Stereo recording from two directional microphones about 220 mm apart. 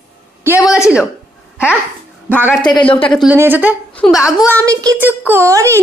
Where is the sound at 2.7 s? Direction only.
25° left (ahead or behind).